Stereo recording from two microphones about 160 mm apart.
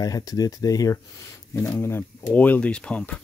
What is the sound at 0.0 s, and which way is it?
Speech, 25° left (ahead or behind).